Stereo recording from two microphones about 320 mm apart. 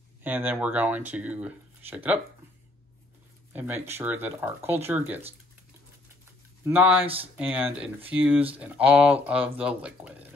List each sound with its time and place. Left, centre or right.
0.2 s speech: centre
3.5 s speech: centre
6.6 s speech: centre